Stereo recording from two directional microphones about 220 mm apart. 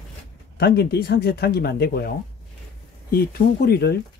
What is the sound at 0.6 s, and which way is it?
Speech, 45° left (ahead or behind).